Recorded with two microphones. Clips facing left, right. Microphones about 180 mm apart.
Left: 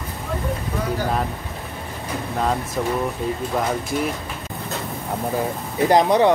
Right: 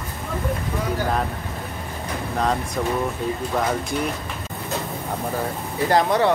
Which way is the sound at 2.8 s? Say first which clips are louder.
Left 1 dB; 5° left (ahead or behind).